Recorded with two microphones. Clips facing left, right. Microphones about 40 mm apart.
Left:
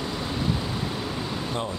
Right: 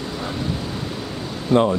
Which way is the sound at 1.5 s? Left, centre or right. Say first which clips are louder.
Right 18 dB; right.